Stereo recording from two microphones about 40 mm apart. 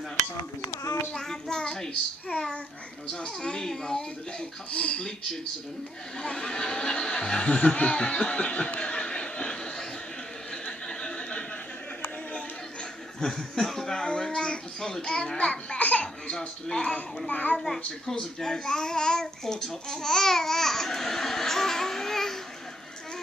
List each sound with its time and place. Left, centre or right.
1.1 s a child's voice: centre
2.3 s a child's voice: left
3.1 s a child's voice: centre
4.6 s speech: left
6.1 s a child's voice: centre
7.4 s snicker: left
10.5 s a sound: left
13.2 s a sound: centre
14.0 s a sound: left
14.4 s a child's voice: centre
15.3 s a child's voice: left
16.3 s speech: centre
17.3 s a child's voice: left
17.6 s a child's voice: centre